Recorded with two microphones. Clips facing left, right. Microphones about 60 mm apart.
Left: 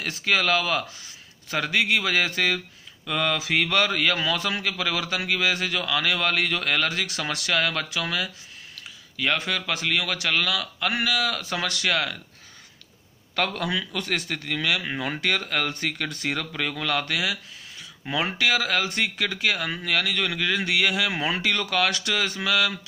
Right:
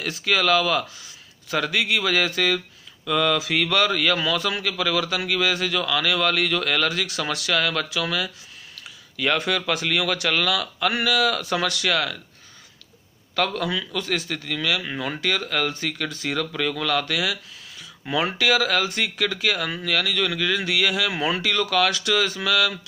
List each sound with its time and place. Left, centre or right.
0.0 s a man's voice: centre
4.6 s a man's voice: centre
9.1 s a man's voice: centre
11.8 s a man's voice: centre
13.4 s a man's voice: left
13.9 s speech: left
14.5 s a man's voice: left
18.0 s speech: centre
18.4 s a man's voice: left